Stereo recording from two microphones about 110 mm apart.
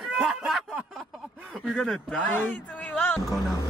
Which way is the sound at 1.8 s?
10° left (ahead or behind).